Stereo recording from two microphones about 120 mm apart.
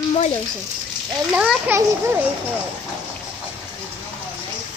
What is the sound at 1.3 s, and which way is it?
Speech, 5° right (ahead or behind).